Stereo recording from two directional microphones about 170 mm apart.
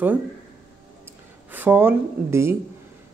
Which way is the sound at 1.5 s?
10° right (ahead or behind).